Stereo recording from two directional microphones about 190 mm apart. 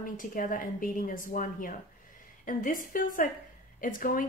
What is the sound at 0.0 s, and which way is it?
A woman's voice, 45° left (ahead or behind).